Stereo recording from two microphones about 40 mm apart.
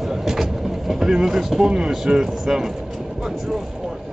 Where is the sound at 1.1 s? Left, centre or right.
Centre.